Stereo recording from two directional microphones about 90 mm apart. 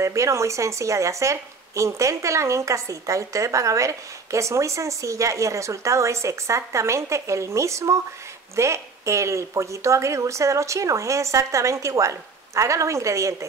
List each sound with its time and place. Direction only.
0.0 s speech: 35° right (ahead or behind)